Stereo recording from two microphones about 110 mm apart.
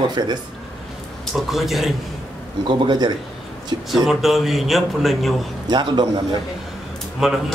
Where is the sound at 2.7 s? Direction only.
45° right (ahead or behind).